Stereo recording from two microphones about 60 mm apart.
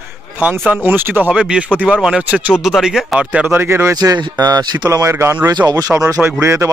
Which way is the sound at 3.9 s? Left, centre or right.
Right.